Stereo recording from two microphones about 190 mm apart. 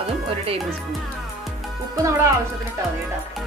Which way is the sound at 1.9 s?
15° right (ahead or behind).